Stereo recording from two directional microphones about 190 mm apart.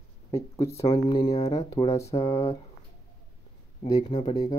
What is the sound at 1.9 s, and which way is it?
Speech, 15° left (ahead or behind).